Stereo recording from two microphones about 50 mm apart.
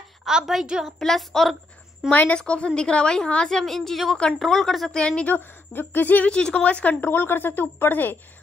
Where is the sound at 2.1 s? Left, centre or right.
Left.